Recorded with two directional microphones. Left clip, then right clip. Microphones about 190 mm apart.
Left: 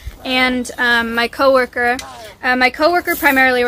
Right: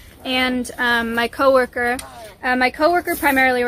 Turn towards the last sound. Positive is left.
turn(degrees=0)  # may be behind; listen again after turning